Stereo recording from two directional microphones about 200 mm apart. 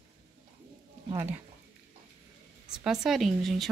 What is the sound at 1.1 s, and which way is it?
Speech, 10° right (ahead or behind).